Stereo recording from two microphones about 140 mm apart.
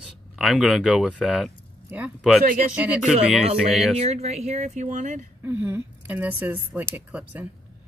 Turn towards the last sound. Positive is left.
turn(degrees=-15)  # may be behind; listen again after turning